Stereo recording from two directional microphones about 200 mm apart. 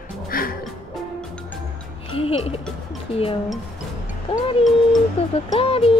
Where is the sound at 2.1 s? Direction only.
30° left (ahead or behind).